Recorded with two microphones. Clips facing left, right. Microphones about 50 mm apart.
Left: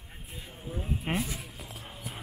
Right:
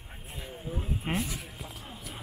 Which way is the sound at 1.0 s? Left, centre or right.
Centre.